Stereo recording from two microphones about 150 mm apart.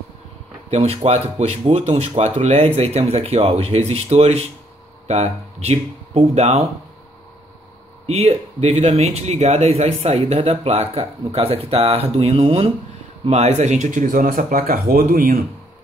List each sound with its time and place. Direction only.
0.7 s speech: 45° right (ahead or behind)
8.1 s speech: 45° right (ahead or behind); by 15.3 s 70° right (ahead or behind)